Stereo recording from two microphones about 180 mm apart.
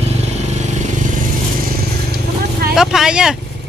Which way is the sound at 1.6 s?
60° right (ahead or behind).